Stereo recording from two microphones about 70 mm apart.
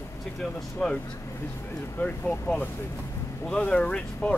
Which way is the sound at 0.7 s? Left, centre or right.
Centre.